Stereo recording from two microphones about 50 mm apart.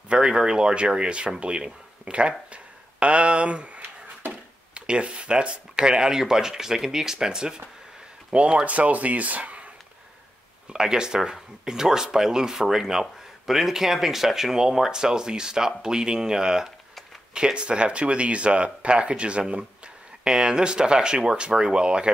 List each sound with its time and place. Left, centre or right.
0.1 s speech: centre
10.7 s speech: centre